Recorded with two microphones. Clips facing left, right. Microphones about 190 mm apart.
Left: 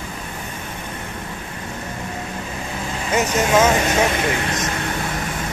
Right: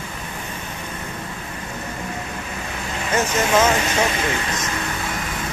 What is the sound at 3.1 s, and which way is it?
Speech, 15° left (ahead or behind).